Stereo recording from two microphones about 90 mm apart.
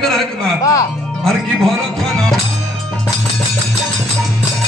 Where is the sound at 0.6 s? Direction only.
40° left (ahead or behind).